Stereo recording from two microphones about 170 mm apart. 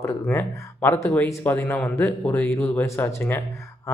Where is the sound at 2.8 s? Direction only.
15° left (ahead or behind).